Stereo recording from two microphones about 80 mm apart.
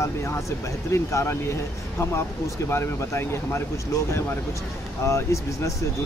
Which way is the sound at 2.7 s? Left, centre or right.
Left.